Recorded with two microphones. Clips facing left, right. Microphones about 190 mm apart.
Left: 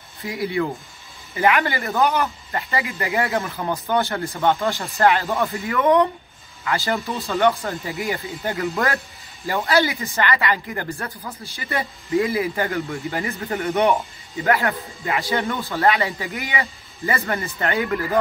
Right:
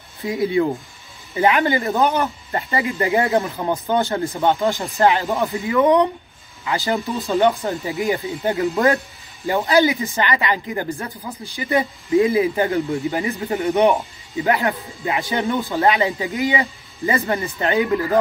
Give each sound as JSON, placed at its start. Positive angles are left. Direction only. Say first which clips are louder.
{"t": 0.2, "sound": "speech", "louder": "right 5 dB", "side_deg": -25}
{"t": 2.1, "sound": "speech", "louder": "right 2 dB", "side_deg": -30}
{"t": 3.5, "sound": "speech", "louder": "right 2 dB", "side_deg": -15}